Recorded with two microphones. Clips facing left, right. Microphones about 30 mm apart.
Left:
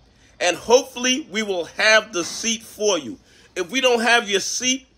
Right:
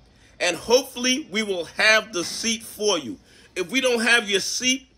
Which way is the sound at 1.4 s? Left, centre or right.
Centre.